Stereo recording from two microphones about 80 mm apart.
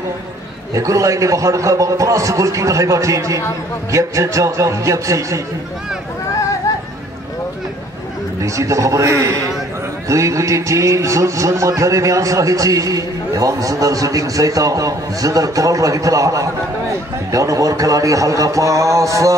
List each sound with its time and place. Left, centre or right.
0.7 s a man's voice: right
8.4 s a man's voice: right